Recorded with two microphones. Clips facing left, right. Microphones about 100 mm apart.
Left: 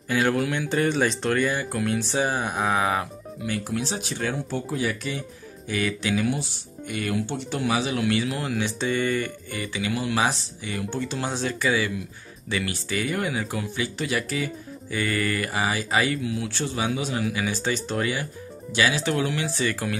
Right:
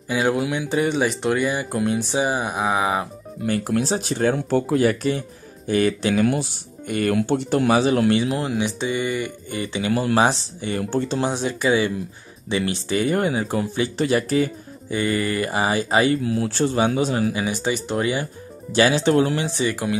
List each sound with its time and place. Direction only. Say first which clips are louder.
0.1 s speech: right 2 dB; 15° right (ahead or behind)
3.4 s speech: right 7 dB; 45° right (ahead or behind)
4.5 s speech: right 9 dB; 60° right (ahead or behind)
5.7 s speech: right 6 dB; 35° right (ahead or behind)
6.9 s speech: right 7 dB; 50° right (ahead or behind)
8.2 s speech: right 4 dB; 25° right (ahead or behind)
9.5 s speech: right 9 dB; 25° right (ahead or behind)
11.2 s speech: right 4 dB; 20° right (ahead or behind)
15.0 s speech: right 4 dB; 25° right (ahead or behind)
17.5 s speech: right 3 dB; 15° right (ahead or behind)
18.2 s speech: right 2 dB; 35° right (ahead or behind)
19.4 s speech: right 3 dB; 20° right (ahead or behind)